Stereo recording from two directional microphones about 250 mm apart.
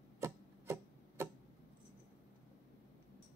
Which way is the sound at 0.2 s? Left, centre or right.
Centre.